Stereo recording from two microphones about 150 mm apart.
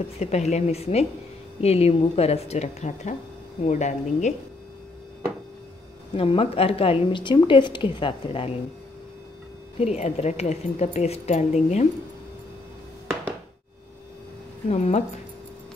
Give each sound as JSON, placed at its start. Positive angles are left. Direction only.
{"t": 0.2, "sound": "a woman's voice", "side_deg": 45}
{"t": 6.1, "sound": "a woman's voice", "side_deg": 40}
{"t": 9.8, "sound": "a woman's voice", "side_deg": 45}
{"t": 14.7, "sound": "a woman's voice", "side_deg": 45}